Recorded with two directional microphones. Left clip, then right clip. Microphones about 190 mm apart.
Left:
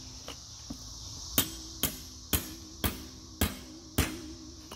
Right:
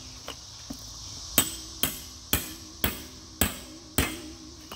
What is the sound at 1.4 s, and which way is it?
Ping, 5° right (ahead or behind).